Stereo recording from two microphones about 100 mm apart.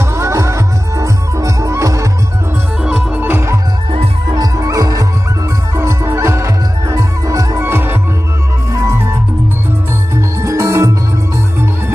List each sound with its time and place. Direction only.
0.0 s music: 30° right (ahead or behind)
3.2 s music: 20° right (ahead or behind)
4.3 s music: 35° right (ahead or behind)
10.1 s music: 30° right (ahead or behind)